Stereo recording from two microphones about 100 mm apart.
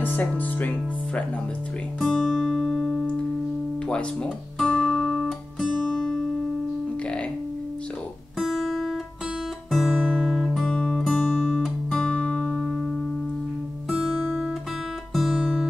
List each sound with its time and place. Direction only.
0.0 s speech: 15° left (ahead or behind)
2.0 s music: 5° left (ahead or behind)
3.9 s guitar: 10° left (ahead or behind)
8.4 s guitar: centre (ahead or behind)
9.7 s music: centre (ahead or behind)
12.5 s music: 5° right (ahead or behind)
15.1 s guitar: 5° right (ahead or behind)